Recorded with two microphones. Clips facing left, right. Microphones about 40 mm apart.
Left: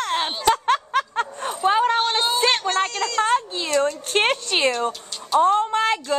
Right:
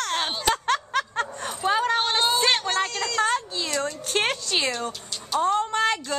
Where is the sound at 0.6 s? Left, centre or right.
Left.